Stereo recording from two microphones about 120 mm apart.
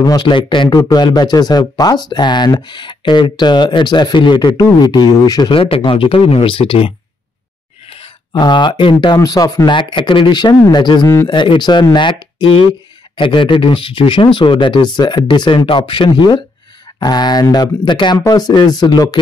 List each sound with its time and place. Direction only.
0.0 s speech: 35° left (ahead or behind)
5.5 s speech: 50° left (ahead or behind)
8.3 s speech: 35° left (ahead or behind)